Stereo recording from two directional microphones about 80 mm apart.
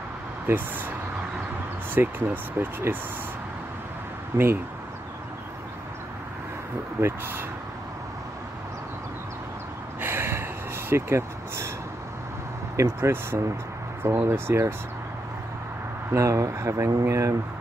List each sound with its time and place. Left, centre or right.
0.5 s speech: right
2.0 s speech: right
4.3 s speech: right
7.0 s speech: right
9.9 s a sound: right
10.9 s speech: right
12.7 s speech: right
16.2 s speech: right